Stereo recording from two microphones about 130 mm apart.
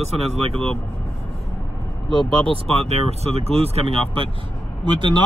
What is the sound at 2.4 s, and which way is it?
Speech, 50° right (ahead or behind).